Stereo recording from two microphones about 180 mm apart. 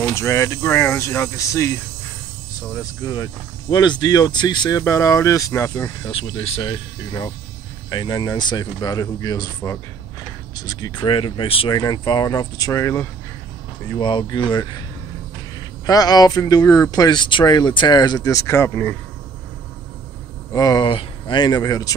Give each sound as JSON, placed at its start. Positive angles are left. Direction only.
{"t": 0.0, "sound": "speech", "side_deg": 15}
{"t": 6.1, "sound": "speech", "side_deg": 30}
{"t": 10.5, "sound": "speech", "side_deg": 20}
{"t": 15.9, "sound": "speech", "side_deg": 20}
{"t": 20.5, "sound": "speech", "side_deg": 20}